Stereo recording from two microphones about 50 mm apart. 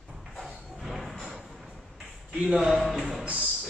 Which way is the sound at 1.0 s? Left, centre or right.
Centre.